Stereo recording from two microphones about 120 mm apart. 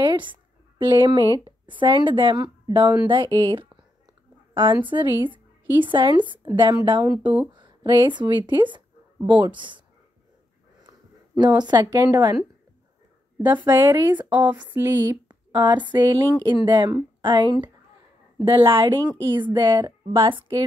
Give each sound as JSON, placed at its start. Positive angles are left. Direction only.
{"t": 0.0, "sound": "a sound", "side_deg": -40}
{"t": 1.4, "sound": "speech", "side_deg": -40}
{"t": 4.8, "sound": "a woman's voice", "side_deg": -40}
{"t": 11.4, "sound": "speech", "side_deg": -35}
{"t": 13.5, "sound": "speech", "side_deg": -15}
{"t": 13.7, "sound": "speech", "side_deg": -40}
{"t": 14.0, "sound": "speech", "side_deg": -15}
{"t": 15.2, "sound": "a woman's voice", "side_deg": -40}